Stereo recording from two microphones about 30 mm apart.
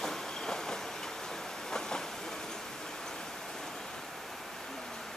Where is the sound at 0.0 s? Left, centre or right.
Centre.